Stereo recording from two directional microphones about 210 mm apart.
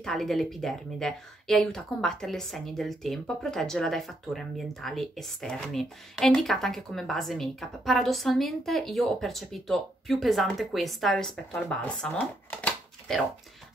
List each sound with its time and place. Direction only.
0.0 s speech: centre (ahead or behind)